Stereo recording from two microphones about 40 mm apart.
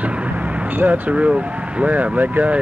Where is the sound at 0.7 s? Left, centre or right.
Right.